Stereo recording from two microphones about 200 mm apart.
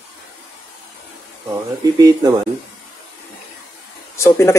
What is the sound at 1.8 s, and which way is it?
Speech, 15° right (ahead or behind).